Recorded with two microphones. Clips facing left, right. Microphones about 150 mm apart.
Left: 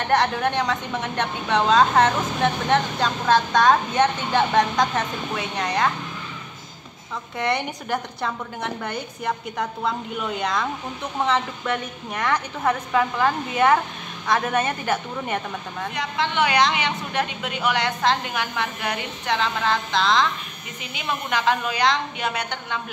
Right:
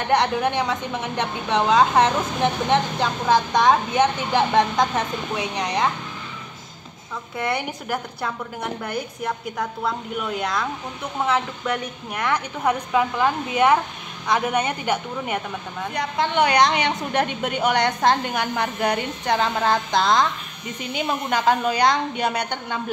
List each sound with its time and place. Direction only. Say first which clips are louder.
0.1 s a woman's voice: right 1 dB; 15° right (ahead or behind)
7.3 s a woman's voice: left 1 dB; 5° right (ahead or behind)
15.9 s a woman's voice: right 3 dB; 40° right (ahead or behind)